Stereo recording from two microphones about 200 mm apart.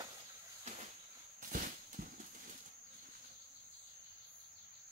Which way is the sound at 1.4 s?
40° right (ahead or behind).